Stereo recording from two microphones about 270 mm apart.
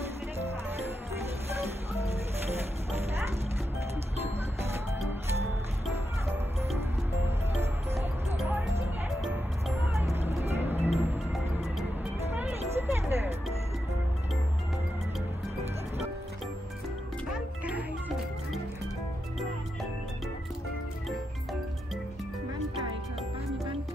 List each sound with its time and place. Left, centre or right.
7.9 s music: centre
12.4 s a sound: centre
17.3 s music: centre